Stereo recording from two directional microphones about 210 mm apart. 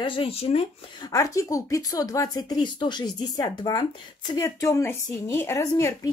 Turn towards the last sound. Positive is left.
turn(degrees=15)  # may be behind; listen again after turning